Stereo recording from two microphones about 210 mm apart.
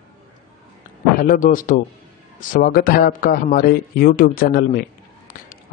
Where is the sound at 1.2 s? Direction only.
40° left (ahead or behind).